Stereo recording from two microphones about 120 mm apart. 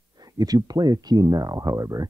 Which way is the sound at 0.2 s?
30° right (ahead or behind).